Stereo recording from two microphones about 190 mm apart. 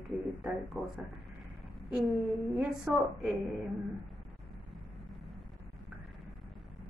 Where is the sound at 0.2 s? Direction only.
5° right (ahead or behind).